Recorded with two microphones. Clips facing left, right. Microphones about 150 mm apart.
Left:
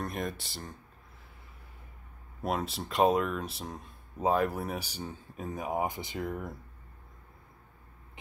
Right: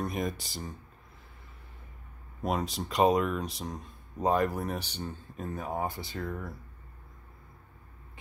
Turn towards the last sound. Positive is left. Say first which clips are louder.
# left 1 dB
turn(degrees=15)  # may be behind; listen again after turning